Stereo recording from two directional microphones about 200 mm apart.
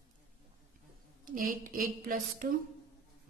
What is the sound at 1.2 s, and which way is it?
Speech, 45° right (ahead or behind).